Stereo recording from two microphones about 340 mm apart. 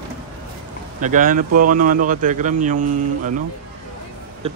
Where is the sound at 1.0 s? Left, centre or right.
Right.